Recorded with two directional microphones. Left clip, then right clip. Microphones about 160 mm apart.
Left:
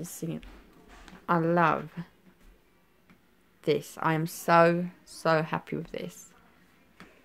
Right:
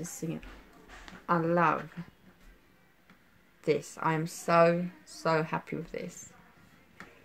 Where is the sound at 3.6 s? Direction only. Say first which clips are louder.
Left 2 dB; 20° left (ahead or behind).